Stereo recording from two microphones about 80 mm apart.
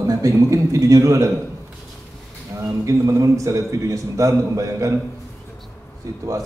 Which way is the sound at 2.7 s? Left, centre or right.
Right.